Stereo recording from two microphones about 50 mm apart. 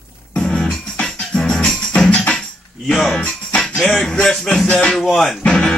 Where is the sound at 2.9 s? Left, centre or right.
Centre.